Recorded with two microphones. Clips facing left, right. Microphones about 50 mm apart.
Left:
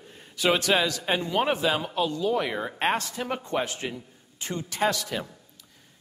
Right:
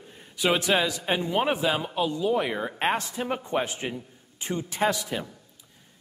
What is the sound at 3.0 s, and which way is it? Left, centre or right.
A man's voice, right.